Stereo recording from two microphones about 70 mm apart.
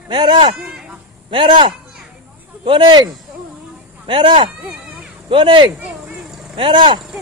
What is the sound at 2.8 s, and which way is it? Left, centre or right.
Speech, right.